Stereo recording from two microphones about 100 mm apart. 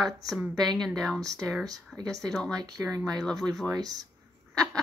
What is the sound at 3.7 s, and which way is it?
Speech, 40° right (ahead or behind).